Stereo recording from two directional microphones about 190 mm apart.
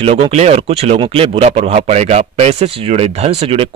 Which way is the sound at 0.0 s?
30° right (ahead or behind).